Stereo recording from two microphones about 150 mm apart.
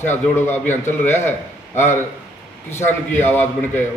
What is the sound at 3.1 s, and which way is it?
Speech, 15° left (ahead or behind).